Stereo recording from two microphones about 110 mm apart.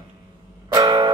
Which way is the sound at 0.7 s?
40° right (ahead or behind).